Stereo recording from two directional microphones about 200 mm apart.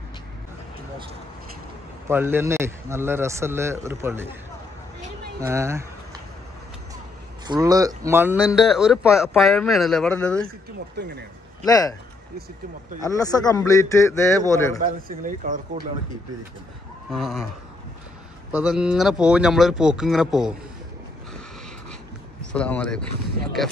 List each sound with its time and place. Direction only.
2.0 s speech: 10° right (ahead or behind)
5.4 s speech: 15° right (ahead or behind)
7.4 s speech: 20° right (ahead or behind); by 10.5 s 5° left (ahead or behind)
11.6 s a man's voice: 15° left (ahead or behind)
13.0 s a man's voice: 15° left (ahead or behind)
14.8 s speech: 40° right (ahead or behind)
17.1 s speech: centre (ahead or behind)
18.5 s speech: 5° right (ahead or behind)
22.5 s speech: 5° left (ahead or behind)